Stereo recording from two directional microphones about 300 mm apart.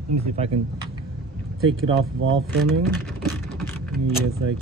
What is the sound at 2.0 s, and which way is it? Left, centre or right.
Speech, right.